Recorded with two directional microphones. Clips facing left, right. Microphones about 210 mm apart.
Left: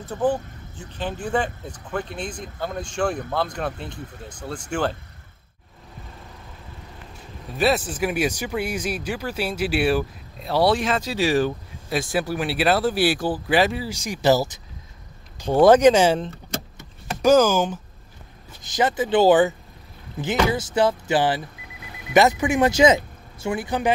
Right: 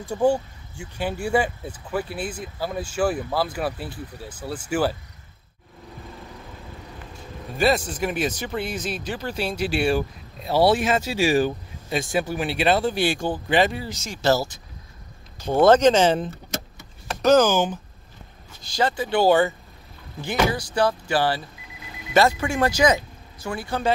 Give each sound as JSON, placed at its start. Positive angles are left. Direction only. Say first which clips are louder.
{"t": 0.0, "sound": "speech", "louder": "right 2 dB", "side_deg": -10}
{"t": 7.5, "sound": "speech", "louder": "even", "side_deg": 5}
{"t": 14.0, "sound": "speech", "louder": "left 2 dB", "side_deg": 15}
{"t": 15.6, "sound": "speech", "louder": "left 2 dB", "side_deg": 15}
{"t": 17.2, "sound": "speech", "louder": "left 1 dB", "side_deg": 10}
{"t": 18.6, "sound": "speech", "louder": "left 2 dB", "side_deg": 20}